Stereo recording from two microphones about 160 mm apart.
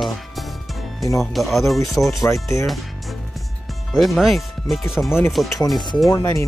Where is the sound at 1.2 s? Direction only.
Centre (ahead or behind).